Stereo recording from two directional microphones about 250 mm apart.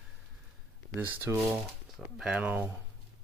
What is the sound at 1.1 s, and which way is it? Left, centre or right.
Speech, centre.